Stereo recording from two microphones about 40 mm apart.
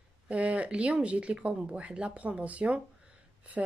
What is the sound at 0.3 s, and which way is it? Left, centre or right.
Speech, right.